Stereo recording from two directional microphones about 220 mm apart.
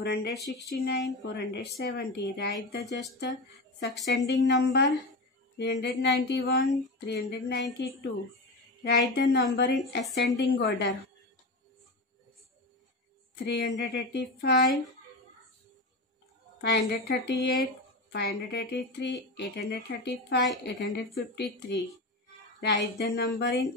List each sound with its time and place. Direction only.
0.0 s speech: 50° left (ahead or behind)
13.5 s speech: 50° left (ahead or behind)
16.6 s speech: 50° left (ahead or behind)